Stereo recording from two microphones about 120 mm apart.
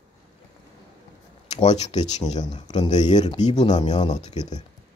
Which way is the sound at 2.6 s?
35° left (ahead or behind).